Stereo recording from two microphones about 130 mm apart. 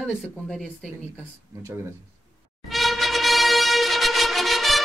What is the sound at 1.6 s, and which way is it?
Speech, 20° right (ahead or behind).